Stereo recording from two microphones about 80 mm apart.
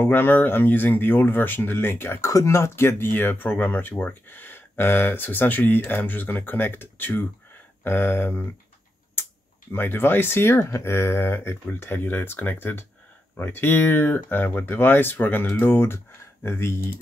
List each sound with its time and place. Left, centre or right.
0.0 s speech: left
9.7 s speech: left